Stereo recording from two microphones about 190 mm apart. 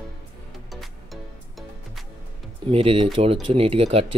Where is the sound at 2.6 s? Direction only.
30° right (ahead or behind).